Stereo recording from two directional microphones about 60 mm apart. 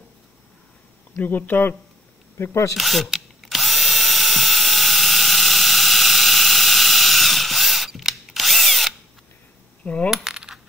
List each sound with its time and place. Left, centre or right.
1.1 s speech: left
2.3 s speech: left
2.7 s drill: centre
10.0 s coin: centre